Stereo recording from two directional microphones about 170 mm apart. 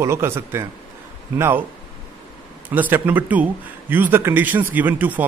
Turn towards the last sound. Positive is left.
turn(degrees=-10)  # may be behind; listen again after turning